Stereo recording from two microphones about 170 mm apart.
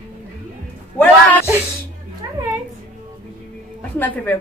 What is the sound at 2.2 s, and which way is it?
Music, 20° right (ahead or behind).